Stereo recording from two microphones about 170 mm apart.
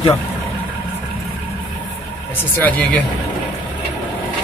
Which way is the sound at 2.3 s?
10° left (ahead or behind).